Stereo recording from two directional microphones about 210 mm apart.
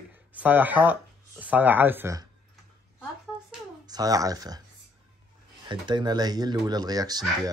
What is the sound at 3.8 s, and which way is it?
Speech, 20° right (ahead or behind).